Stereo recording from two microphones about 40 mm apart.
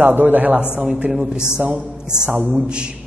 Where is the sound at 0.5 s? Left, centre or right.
Right.